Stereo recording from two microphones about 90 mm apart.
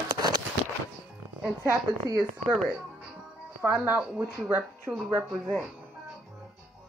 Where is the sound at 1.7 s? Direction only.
30° right (ahead or behind).